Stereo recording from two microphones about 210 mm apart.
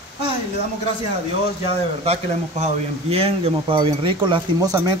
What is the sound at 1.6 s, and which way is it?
Speech, 30° right (ahead or behind).